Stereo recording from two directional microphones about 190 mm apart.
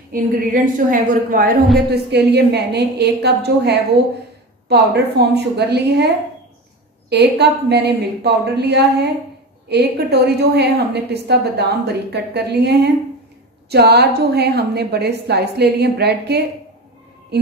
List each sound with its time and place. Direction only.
0.1 s a woman's voice: 45° right (ahead or behind)
1.9 s a woman's voice: 60° right (ahead or behind)